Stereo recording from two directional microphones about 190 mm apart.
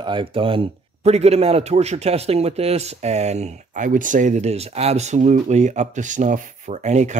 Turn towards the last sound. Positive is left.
turn(degrees=-35)  # may be behind; listen again after turning